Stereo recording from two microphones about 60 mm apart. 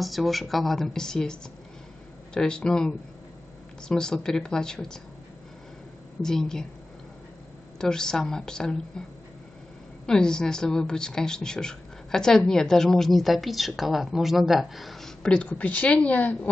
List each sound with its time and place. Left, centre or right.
0.0 s a woman's voice: centre
3.9 s a woman's voice: centre
6.2 s a woman's voice: centre
7.8 s a woman's voice: centre
10.0 s a woman's voice: centre
15.4 s a woman's voice: left